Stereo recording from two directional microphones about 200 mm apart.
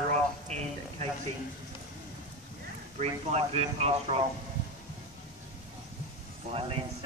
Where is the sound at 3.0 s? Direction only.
30° right (ahead or behind).